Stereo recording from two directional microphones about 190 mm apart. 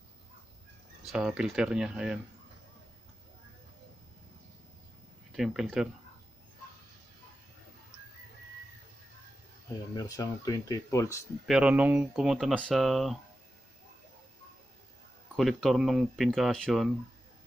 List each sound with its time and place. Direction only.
1.0 s speech: 5° right (ahead or behind)
5.3 s speech: centre (ahead or behind)
9.9 s speech: 20° left (ahead or behind)
11.4 s speech: 5° right (ahead or behind)
15.3 s speech: centre (ahead or behind)